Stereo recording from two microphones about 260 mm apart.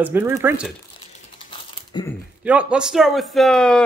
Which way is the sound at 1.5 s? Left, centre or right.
Centre.